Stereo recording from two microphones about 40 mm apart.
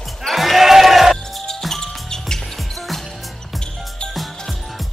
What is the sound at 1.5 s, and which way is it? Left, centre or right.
Music, centre.